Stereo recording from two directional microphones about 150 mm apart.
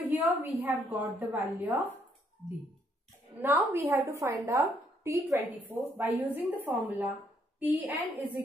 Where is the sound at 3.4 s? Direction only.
15° right (ahead or behind).